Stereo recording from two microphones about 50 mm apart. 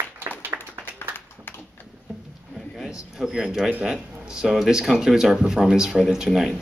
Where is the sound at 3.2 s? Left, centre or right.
Centre.